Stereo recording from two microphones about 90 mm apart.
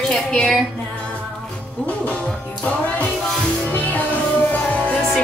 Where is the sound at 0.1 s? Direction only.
5° left (ahead or behind).